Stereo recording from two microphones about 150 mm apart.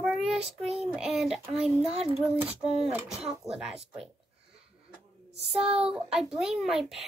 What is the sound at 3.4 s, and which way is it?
Speech, 5° right (ahead or behind).